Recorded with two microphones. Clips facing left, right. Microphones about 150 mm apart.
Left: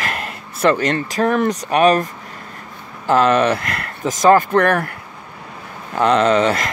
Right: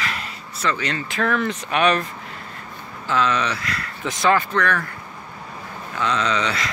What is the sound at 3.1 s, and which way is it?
Speech, 50° left (ahead or behind).